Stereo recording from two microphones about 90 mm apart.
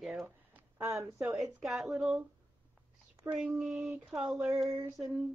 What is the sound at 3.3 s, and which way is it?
Speech, 15° right (ahead or behind).